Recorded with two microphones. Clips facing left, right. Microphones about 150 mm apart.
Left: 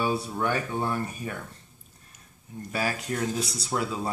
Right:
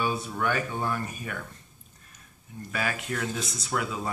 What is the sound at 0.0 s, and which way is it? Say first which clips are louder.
Speech: left 1 dB; 30° left (ahead or behind).